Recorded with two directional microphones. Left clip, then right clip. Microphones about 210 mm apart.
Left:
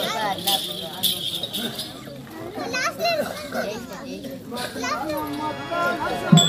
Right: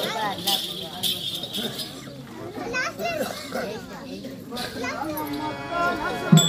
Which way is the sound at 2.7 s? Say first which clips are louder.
Left 4 dB; 45° left (ahead or behind).